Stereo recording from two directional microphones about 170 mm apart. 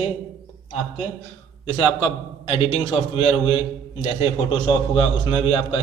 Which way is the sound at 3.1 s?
30° left (ahead or behind).